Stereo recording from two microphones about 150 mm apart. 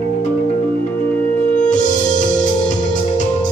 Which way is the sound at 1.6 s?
55° left (ahead or behind).